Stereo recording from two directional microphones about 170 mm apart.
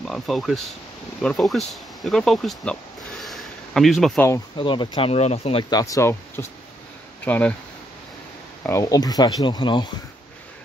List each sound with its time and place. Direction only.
0.0 s speech: centre (ahead or behind)
1.7 s a sound: centre (ahead or behind)
4.6 s speech: 30° left (ahead or behind); by 7.5 s 10° left (ahead or behind)
8.6 s speech: 20° left (ahead or behind)